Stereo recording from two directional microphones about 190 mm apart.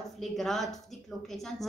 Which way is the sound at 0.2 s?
Centre (ahead or behind).